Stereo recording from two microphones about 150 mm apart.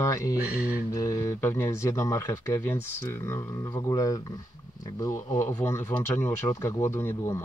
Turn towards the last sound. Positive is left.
turn(degrees=15)  # may be behind; listen again after turning